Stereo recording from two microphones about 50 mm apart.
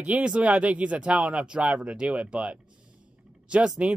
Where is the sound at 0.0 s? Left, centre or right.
Right.